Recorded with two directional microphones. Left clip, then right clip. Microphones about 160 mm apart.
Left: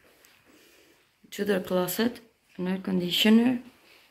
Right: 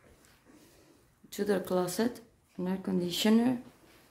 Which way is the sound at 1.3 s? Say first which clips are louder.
Left 3 dB; 5° right (ahead or behind).